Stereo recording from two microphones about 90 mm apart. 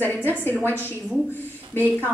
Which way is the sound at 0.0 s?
25° left (ahead or behind).